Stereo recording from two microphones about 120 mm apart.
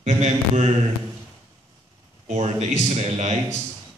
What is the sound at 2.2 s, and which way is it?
Speech, 65° right (ahead or behind).